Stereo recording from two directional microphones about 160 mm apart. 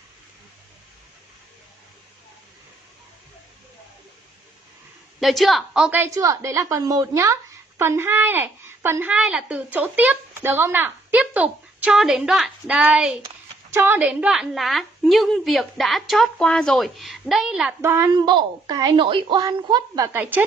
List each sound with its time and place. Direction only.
5.2 s a woman's voice: centre (ahead or behind)
17.8 s a woman's voice: 15° right (ahead or behind)
20.1 s a woman's voice: 10° right (ahead or behind)